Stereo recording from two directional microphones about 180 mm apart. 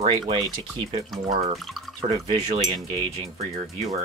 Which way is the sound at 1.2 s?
35° right (ahead or behind).